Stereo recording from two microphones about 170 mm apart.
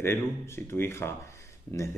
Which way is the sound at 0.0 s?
15° left (ahead or behind).